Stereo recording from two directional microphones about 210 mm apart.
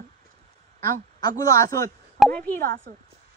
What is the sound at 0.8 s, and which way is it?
Speech, 40° right (ahead or behind).